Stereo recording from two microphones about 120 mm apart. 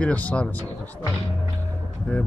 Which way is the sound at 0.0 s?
10° left (ahead or behind).